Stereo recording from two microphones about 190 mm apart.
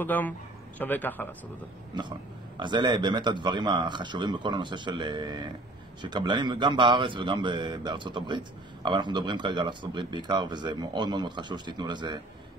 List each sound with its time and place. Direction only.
0.0 s a man's voice: 10° left (ahead or behind)
2.0 s speech: 25° right (ahead or behind)